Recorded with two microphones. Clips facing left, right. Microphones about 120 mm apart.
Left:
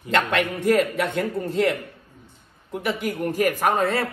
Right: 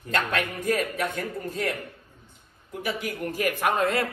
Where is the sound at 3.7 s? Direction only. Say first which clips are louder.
Left 2 dB; 30° left (ahead or behind).